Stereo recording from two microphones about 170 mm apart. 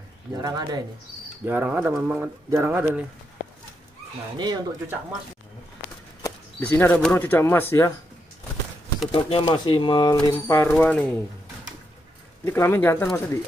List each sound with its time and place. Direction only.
0.3 s speech: 20° right (ahead or behind)
1.4 s speech: 10° right (ahead or behind)
4.4 s speech: 25° right (ahead or behind)
6.6 s speech: 10° left (ahead or behind)
9.1 s speech: 30° left (ahead or behind)
10.7 s speech: 10° left (ahead or behind)
12.4 s speech: 15° left (ahead or behind)